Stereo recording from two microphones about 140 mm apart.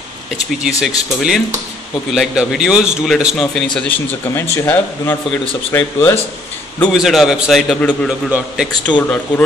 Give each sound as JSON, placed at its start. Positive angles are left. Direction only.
{"t": 0.7, "sound": "speech", "side_deg": -5}
{"t": 6.8, "sound": "speech", "side_deg": 0}